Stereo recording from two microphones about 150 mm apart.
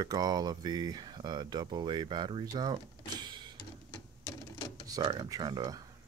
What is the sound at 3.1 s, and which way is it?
Printer, 30° right (ahead or behind).